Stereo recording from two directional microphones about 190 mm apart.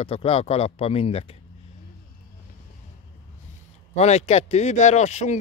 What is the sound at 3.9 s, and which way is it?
Speech, 35° left (ahead or behind).